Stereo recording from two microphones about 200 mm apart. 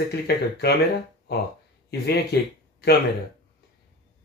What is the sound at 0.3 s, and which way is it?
Speech, 55° left (ahead or behind).